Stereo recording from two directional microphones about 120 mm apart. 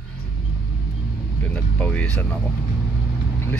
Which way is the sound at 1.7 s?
10° left (ahead or behind).